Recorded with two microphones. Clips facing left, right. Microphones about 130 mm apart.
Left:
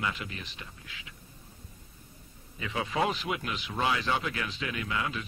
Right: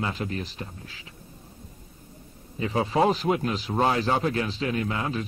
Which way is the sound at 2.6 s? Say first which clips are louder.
Right 7 dB; 35° right (ahead or behind).